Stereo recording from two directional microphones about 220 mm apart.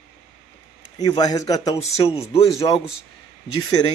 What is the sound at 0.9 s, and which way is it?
A man's voice, 15° left (ahead or behind).